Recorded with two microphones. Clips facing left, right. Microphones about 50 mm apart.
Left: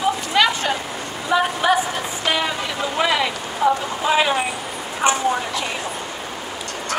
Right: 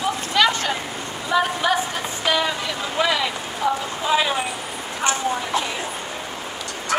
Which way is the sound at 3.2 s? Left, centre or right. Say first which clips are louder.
Left 4 dB; centre.